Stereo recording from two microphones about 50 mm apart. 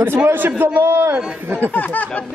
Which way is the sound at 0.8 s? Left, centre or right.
Right.